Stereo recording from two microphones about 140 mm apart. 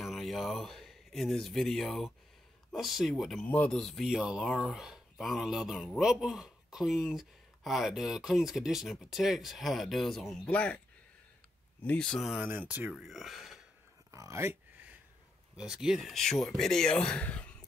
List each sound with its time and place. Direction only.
0.0 s speech: centre (ahead or behind)
3.4 s speech: 10° left (ahead or behind)
11.8 s speech: 10° left (ahead or behind)
12.4 s speech: 10° right (ahead or behind)
14.1 s a sound: 20° right (ahead or behind)
15.5 s speech: 5° right (ahead or behind)